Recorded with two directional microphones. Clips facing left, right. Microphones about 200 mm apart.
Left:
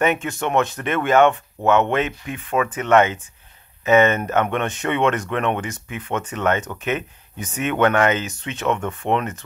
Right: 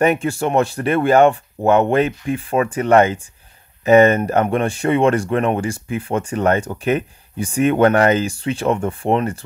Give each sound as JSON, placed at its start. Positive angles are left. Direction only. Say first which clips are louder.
{"t": 0.0, "sound": "speech", "louder": "right 4 dB", "side_deg": -35}